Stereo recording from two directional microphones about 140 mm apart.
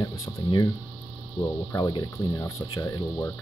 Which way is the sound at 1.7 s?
30° left (ahead or behind).